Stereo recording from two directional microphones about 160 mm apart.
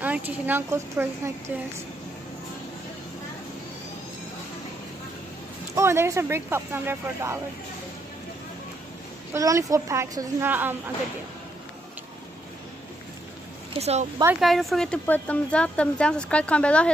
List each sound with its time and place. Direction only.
0.0 s speech: 10° right (ahead or behind)
5.8 s speech: 15° right (ahead or behind)
9.3 s speech: 20° right (ahead or behind)
13.7 s speech: 40° right (ahead or behind)
14.4 s speech: centre (ahead or behind)